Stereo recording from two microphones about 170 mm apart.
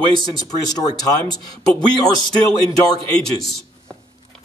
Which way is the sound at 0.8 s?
20° left (ahead or behind).